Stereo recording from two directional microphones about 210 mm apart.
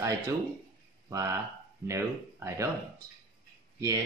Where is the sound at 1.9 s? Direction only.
15° right (ahead or behind).